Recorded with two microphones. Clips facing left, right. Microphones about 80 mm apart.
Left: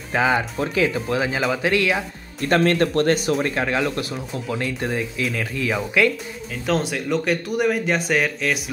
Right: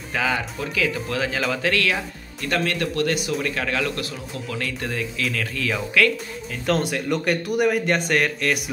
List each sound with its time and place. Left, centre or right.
0.1 s speech: left
2.4 s speech: left
3.4 s speech: left
6.6 s speech: centre